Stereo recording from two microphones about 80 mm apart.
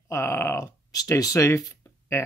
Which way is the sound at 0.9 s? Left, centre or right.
Left.